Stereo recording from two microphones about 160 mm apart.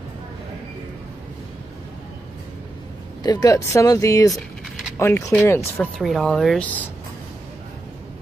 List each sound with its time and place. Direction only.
3.3 s speech: 25° left (ahead or behind)
5.9 s speech: centre (ahead or behind)